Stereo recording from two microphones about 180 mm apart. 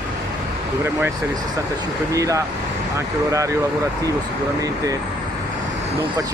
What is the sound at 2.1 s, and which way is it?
Speech, 15° right (ahead or behind).